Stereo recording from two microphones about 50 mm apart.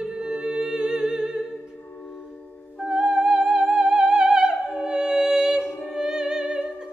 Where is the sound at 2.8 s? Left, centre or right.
Centre.